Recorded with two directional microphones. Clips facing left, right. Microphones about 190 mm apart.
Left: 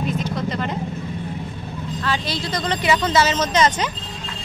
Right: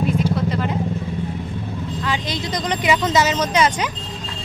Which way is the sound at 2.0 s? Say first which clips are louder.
Left 1 dB; 15° right (ahead or behind).